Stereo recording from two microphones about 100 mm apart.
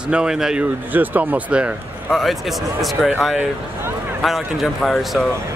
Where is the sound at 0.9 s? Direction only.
15° right (ahead or behind).